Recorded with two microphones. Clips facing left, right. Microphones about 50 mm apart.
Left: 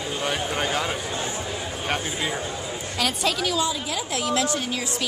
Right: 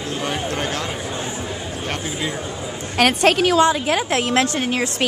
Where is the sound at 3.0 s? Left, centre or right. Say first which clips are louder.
Right 9 dB; right.